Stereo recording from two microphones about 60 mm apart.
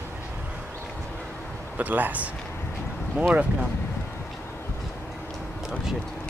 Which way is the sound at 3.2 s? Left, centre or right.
Centre.